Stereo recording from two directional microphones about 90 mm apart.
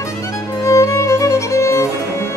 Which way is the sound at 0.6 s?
35° left (ahead or behind).